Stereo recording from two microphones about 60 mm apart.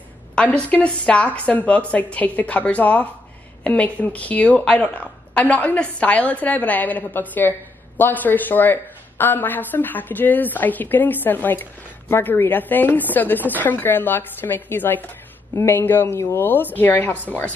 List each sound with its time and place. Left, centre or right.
0.4 s a woman's voice: left
16.2 s speech: left
16.7 s a woman's voice: left